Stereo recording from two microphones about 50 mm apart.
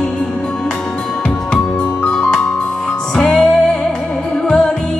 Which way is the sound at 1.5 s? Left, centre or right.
Centre.